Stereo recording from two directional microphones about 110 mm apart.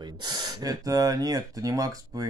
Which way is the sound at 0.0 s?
40° right (ahead or behind).